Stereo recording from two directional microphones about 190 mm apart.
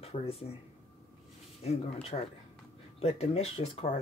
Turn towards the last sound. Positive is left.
turn(degrees=30)  # may be behind; listen again after turning